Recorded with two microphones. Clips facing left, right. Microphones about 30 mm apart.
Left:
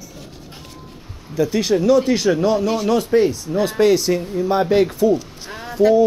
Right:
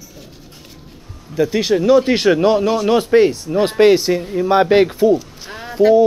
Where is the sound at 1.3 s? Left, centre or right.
Centre.